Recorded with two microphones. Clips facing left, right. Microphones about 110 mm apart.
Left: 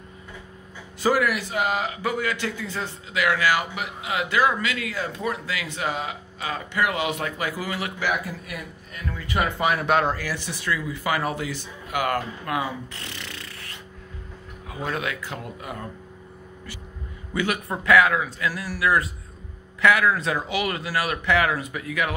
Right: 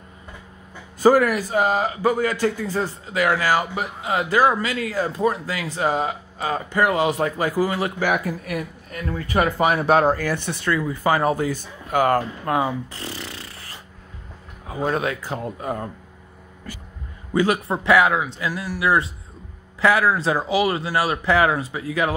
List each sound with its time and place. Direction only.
1.0 s a man's voice: 40° right (ahead or behind)
8.0 s a man's voice: 45° right (ahead or behind)
17.3 s a man's voice: 35° right (ahead or behind)